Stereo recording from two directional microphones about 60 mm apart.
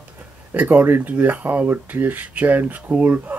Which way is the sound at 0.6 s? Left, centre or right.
Right.